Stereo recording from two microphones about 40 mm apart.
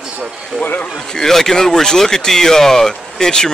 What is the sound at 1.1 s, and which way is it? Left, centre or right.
Speech, centre.